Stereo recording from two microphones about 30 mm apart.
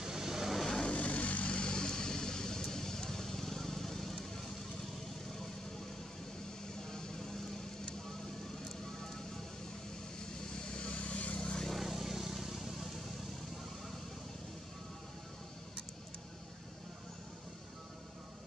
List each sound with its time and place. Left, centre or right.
0.0 s vehicle: centre
0.8 s vehicle: left
1.5 s vehicle: left; by 4.5 s centre
6.9 s vehicle: centre
10.4 s vehicle: left
11.0 s vehicle: left
11.3 s vehicle: left
11.8 s vehicle: centre